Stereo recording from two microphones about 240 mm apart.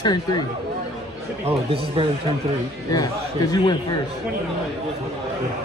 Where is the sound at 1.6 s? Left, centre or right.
Right.